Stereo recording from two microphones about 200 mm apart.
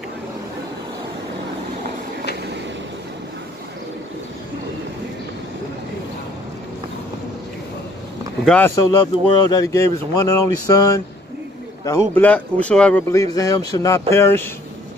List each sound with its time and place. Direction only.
8.5 s speech: 10° left (ahead or behind)
13.1 s speech: 15° left (ahead or behind)